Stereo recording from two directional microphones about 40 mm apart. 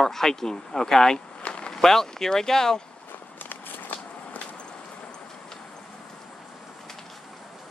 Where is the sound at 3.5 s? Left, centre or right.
Left.